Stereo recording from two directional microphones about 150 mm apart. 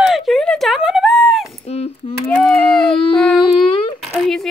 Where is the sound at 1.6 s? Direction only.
40° left (ahead or behind).